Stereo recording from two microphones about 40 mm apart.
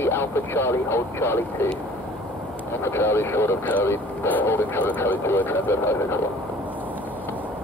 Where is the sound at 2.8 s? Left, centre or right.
Left.